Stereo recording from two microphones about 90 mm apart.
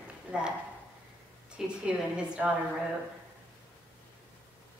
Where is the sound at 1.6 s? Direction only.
5° right (ahead or behind).